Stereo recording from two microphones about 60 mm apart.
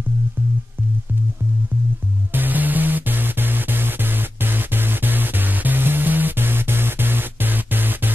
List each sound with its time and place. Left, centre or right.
2.3 s music: right